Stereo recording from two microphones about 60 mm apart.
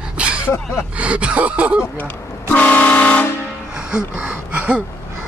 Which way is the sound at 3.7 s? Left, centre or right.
Centre.